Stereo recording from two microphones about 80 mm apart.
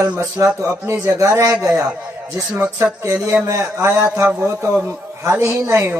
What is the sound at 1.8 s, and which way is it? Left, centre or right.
Speech, centre.